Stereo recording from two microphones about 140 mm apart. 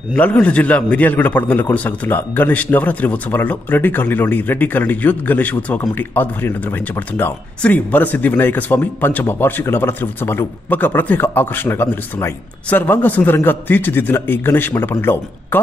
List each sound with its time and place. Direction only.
0.1 s a man's voice: 10° left (ahead or behind)